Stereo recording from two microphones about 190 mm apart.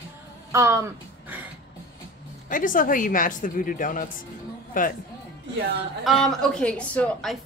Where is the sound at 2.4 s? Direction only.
45° left (ahead or behind).